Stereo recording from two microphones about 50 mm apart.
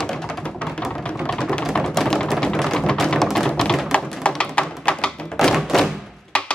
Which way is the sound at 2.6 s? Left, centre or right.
Centre.